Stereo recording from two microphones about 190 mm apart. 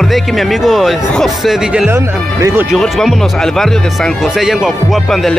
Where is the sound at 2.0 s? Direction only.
15° right (ahead or behind).